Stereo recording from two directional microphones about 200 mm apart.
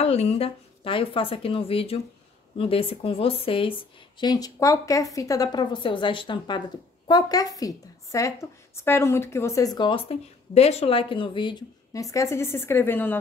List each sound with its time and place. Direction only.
0.0 s a woman's voice: 30° left (ahead or behind); by 13.2 s 10° left (ahead or behind)